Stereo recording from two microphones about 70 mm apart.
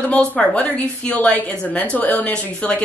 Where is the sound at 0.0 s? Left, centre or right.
Centre.